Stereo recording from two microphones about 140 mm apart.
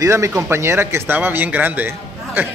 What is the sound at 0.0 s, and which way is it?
A man's voice, 20° right (ahead or behind).